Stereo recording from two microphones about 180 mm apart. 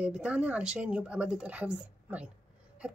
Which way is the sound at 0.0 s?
5° right (ahead or behind).